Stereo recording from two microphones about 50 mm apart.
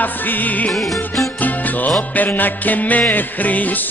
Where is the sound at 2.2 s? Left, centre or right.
Left.